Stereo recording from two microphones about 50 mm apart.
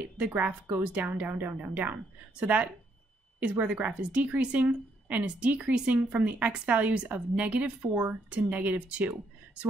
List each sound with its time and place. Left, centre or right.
0.2 s a woman's voice: right
1.3 s speech: right
2.4 s a woman's voice: right